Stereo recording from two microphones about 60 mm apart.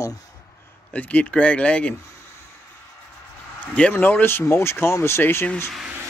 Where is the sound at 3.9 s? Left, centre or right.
Left.